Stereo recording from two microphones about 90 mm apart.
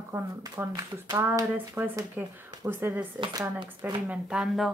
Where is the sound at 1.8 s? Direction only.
20° right (ahead or behind).